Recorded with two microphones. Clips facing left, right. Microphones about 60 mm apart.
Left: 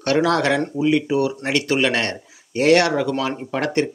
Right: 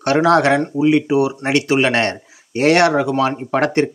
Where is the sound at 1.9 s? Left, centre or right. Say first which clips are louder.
Right 5 dB; right.